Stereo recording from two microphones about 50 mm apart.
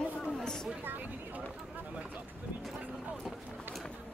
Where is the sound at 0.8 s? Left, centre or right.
Right.